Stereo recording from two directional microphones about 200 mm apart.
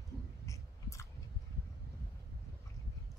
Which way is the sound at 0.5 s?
15° left (ahead or behind).